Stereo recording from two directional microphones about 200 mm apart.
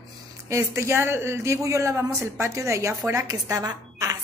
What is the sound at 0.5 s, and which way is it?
A woman's voice, 15° right (ahead or behind).